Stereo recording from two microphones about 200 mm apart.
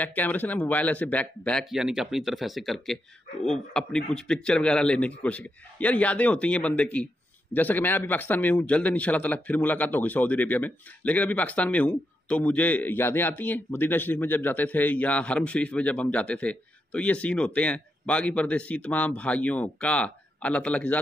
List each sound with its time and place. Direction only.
0.0 s a man's voice: 10° left (ahead or behind)